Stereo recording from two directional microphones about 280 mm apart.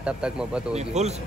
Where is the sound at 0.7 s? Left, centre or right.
Right.